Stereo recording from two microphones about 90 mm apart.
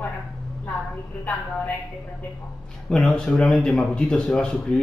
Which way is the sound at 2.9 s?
5° left (ahead or behind).